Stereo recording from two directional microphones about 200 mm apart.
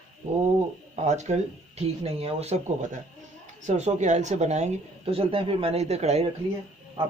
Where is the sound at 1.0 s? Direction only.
35° right (ahead or behind).